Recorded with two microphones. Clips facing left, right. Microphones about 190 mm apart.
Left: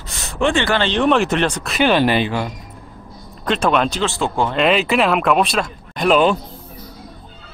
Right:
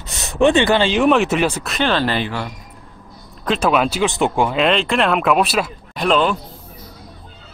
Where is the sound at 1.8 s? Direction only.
15° left (ahead or behind).